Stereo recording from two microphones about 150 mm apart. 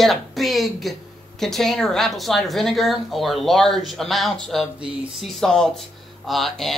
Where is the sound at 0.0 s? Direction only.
Centre (ahead or behind).